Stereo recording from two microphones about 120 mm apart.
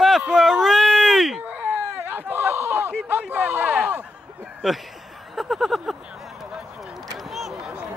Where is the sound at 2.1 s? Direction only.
15° right (ahead or behind).